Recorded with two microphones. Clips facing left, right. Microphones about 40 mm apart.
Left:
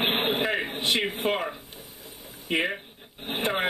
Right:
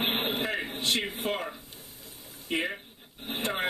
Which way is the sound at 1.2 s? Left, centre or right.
Left.